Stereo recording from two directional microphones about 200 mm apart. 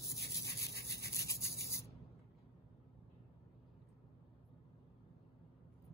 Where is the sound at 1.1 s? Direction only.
15° left (ahead or behind).